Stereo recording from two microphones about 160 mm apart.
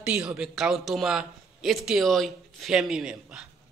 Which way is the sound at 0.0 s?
5° right (ahead or behind).